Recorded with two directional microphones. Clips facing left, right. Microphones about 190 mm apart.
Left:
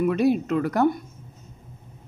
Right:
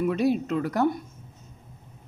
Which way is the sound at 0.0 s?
60° left (ahead or behind).